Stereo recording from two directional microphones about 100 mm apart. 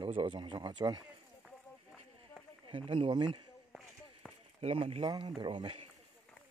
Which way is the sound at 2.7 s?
60° right (ahead or behind).